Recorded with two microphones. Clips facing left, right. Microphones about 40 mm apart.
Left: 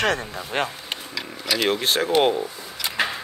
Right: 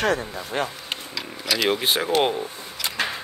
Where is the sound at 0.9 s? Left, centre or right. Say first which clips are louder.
Even; centre.